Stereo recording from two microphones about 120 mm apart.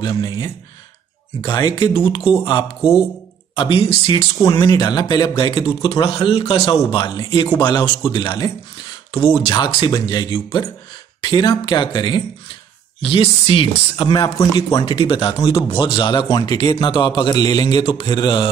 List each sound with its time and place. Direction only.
0.0 s speech: 40° left (ahead or behind)
1.5 s speech: 40° left (ahead or behind)
2.8 s speech: 5° right (ahead or behind)
3.5 s speech: 45° left (ahead or behind)
4.4 s speech: 30° left (ahead or behind)